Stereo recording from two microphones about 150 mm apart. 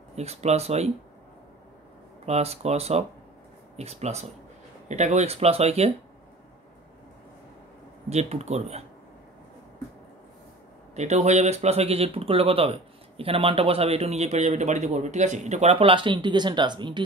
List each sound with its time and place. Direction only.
0.1 s speech: 45° right (ahead or behind)
2.2 s speech: 45° right (ahead or behind)
8.1 s speech: 45° right (ahead or behind)
11.0 s speech: 50° right (ahead or behind); by 17.0 s 30° right (ahead or behind)